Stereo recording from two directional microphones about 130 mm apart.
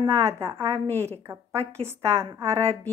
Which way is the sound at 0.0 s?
20° right (ahead or behind).